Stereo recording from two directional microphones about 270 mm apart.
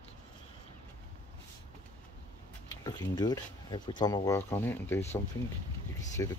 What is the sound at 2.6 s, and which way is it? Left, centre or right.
Speech, centre.